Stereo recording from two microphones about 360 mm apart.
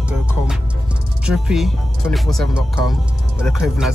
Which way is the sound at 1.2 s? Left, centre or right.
Centre.